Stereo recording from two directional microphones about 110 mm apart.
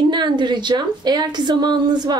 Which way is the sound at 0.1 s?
45° right (ahead or behind).